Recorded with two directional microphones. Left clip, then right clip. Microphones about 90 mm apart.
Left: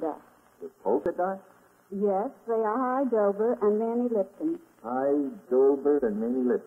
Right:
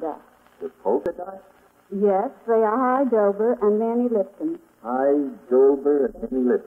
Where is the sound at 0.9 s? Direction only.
50° left (ahead or behind).